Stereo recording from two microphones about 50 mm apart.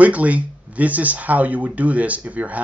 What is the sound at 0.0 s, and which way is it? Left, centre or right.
Speech, right.